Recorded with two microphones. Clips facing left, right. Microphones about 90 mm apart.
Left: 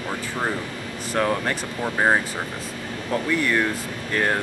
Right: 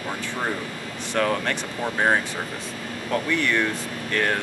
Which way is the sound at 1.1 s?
10° left (ahead or behind).